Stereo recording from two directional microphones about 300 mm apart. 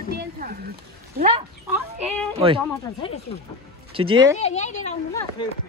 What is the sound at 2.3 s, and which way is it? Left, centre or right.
Speech, centre.